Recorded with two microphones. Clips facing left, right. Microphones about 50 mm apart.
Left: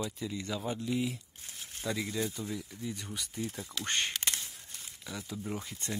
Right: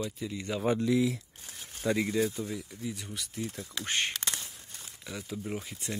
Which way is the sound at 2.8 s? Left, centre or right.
Centre.